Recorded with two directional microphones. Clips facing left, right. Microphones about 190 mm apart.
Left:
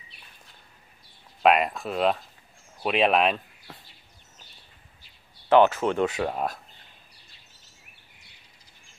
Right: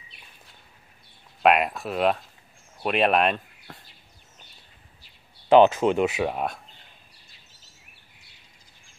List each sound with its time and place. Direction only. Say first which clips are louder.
1.4 s speech: even; centre (ahead or behind)
5.5 s speech: right 3 dB; 15° right (ahead or behind)